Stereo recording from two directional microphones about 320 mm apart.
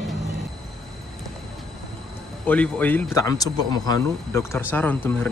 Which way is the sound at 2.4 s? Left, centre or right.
Centre.